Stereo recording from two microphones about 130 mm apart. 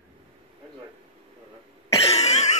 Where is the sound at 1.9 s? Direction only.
50° left (ahead or behind).